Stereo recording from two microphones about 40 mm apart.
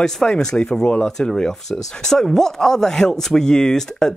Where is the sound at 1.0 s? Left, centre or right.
Centre.